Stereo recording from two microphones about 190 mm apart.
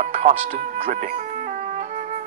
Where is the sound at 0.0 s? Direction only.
35° right (ahead or behind).